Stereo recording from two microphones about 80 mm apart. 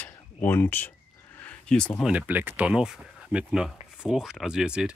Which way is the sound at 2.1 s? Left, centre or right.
Centre.